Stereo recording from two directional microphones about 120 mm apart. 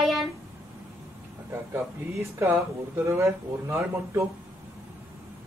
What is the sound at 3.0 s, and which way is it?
Speech, 25° right (ahead or behind).